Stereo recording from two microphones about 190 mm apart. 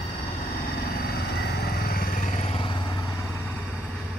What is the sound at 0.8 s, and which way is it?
Vehicle, 55° left (ahead or behind).